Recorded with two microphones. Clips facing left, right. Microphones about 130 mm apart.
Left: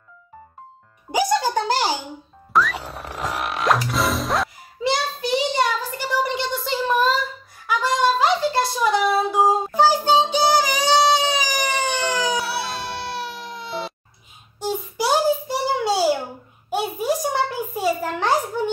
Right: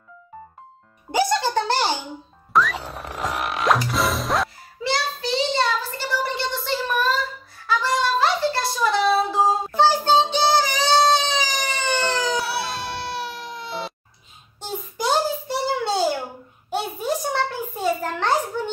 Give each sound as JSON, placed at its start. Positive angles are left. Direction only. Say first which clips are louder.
{"t": 1.1, "sound": "a child's voice", "louder": "left 1 dB", "side_deg": 10}
{"t": 2.5, "sound": "music", "louder": "even", "side_deg": 0}
{"t": 4.8, "sound": "a sound", "louder": "left 2 dB", "side_deg": 20}
{"t": 9.8, "sound": "music", "louder": "even", "side_deg": 10}
{"t": 12.4, "sound": "baby cry", "louder": "even", "side_deg": 0}
{"t": 14.6, "sound": "a sound", "louder": "left 4 dB", "side_deg": 10}